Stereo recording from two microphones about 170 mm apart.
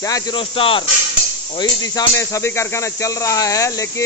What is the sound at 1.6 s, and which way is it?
Speech, 20° left (ahead or behind).